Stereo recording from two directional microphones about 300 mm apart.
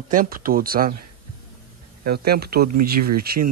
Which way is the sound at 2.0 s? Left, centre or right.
Right.